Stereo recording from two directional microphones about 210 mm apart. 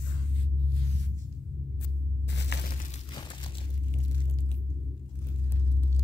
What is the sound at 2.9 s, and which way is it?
Crumpling, 20° left (ahead or behind).